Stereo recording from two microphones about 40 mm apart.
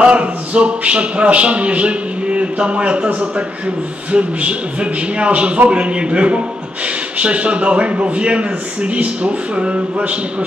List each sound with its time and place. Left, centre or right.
0.0 s a man's voice: right